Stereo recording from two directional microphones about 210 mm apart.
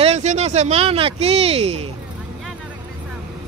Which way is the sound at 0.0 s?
35° right (ahead or behind).